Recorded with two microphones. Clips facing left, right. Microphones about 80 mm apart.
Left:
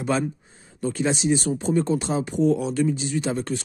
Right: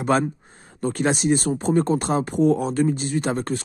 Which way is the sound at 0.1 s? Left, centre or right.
Right.